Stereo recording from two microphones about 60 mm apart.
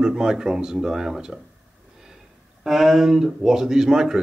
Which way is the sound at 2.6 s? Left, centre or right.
Centre.